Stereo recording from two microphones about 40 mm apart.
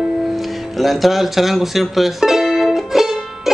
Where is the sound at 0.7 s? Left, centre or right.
Centre.